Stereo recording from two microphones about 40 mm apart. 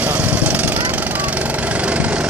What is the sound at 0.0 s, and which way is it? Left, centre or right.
Vehicle, right.